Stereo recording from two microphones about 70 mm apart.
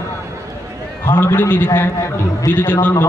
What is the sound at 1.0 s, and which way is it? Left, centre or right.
A man's voice, left.